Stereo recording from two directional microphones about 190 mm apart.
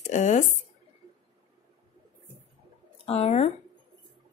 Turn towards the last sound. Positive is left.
turn(degrees=35)  # may be behind; listen again after turning